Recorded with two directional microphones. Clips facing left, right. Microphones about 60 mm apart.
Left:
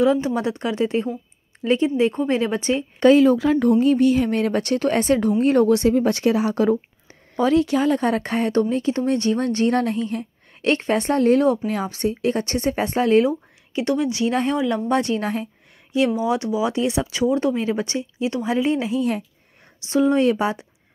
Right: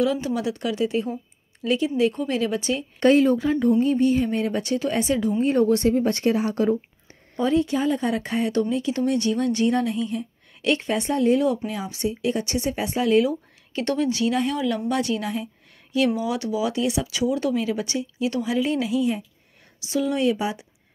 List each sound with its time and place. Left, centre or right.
0.0 s speech: left
3.3 s speech: left
5.4 s speech: left
6.2 s a woman's voice: left
13.7 s speech: centre
14.3 s speech: left
16.2 s speech: left